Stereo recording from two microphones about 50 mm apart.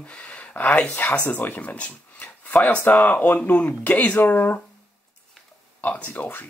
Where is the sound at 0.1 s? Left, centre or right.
Left.